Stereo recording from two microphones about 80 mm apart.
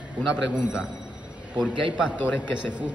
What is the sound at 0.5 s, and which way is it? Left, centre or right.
Speech, centre.